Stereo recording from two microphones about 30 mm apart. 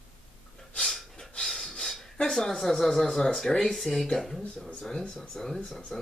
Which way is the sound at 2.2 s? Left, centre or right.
Centre.